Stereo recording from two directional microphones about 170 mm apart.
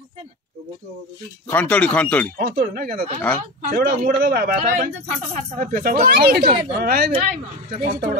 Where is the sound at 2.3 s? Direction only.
60° right (ahead or behind).